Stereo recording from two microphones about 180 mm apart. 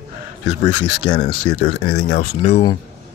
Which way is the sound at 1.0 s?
85° left.